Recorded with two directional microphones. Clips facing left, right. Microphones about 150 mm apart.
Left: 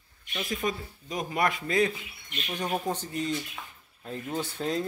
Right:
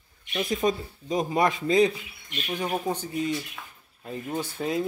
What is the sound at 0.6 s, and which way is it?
Speech, 25° right (ahead or behind).